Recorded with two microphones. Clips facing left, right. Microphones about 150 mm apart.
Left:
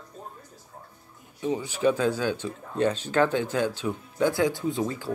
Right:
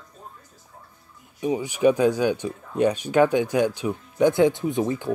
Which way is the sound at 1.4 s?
15° right (ahead or behind).